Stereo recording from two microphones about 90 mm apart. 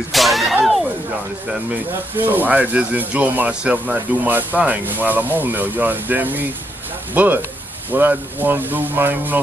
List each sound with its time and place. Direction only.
0.1 s whip: centre (ahead or behind)
2.1 s speech: 20° right (ahead or behind)